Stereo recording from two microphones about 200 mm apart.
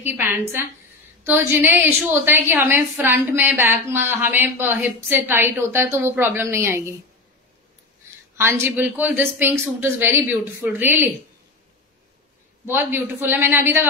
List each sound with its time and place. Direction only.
0.0 s a woman's voice: 10° right (ahead or behind)
8.4 s a woman's voice: 10° right (ahead or behind)
12.6 s a woman's voice: 10° right (ahead or behind)